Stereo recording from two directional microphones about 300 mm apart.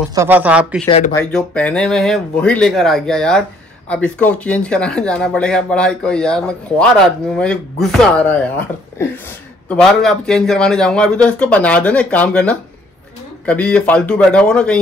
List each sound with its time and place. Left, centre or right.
0.1 s speech: centre
0.8 s speech: centre
1.1 s speech: centre